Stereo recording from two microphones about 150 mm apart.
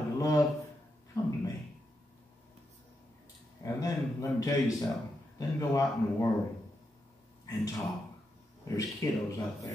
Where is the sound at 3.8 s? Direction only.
25° left (ahead or behind).